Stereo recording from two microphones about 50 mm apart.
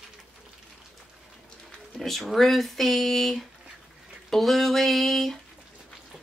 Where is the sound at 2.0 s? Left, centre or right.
Centre.